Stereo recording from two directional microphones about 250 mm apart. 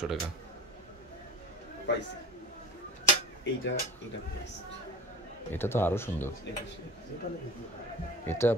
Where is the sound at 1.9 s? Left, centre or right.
Left.